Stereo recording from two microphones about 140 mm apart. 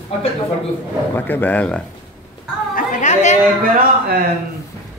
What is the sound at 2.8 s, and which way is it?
Chatter, 65° left (ahead or behind).